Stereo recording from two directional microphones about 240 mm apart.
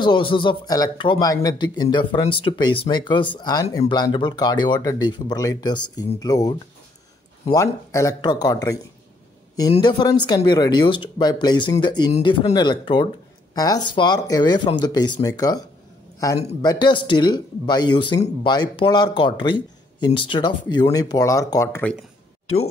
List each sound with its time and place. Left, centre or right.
0.0 s speech: left
7.5 s speech: centre